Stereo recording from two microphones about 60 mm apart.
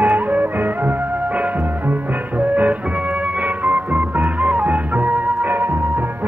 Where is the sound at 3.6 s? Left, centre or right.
Right.